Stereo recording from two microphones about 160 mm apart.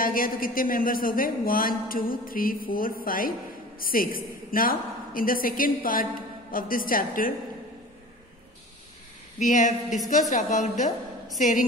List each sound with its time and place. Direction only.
0.0 s speech: 60° left (ahead or behind)
9.4 s a woman's voice: 50° left (ahead or behind)